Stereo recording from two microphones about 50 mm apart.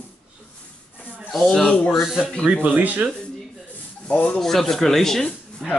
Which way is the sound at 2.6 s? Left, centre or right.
Right.